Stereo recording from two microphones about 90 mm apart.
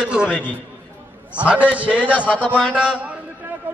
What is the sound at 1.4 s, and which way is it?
Speech, 15° right (ahead or behind).